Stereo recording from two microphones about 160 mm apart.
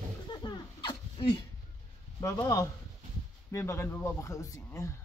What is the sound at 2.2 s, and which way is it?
A man's voice, 20° left (ahead or behind).